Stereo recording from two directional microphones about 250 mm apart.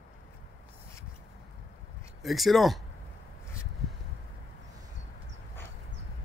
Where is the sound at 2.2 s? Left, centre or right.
Centre.